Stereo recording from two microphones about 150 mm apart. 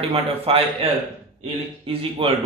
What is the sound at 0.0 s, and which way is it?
A man's voice, 40° right (ahead or behind).